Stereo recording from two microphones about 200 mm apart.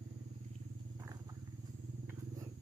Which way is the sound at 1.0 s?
20° right (ahead or behind).